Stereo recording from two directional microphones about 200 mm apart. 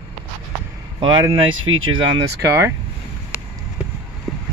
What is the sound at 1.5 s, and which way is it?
Speech, 85° right.